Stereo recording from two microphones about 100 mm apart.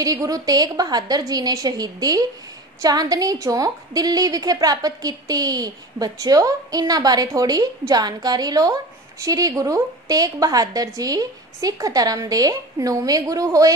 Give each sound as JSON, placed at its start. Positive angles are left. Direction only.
{"t": 0.0, "sound": "a woman's voice", "side_deg": -35}